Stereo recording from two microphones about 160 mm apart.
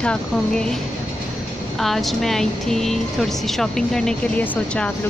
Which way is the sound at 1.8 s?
Centre (ahead or behind).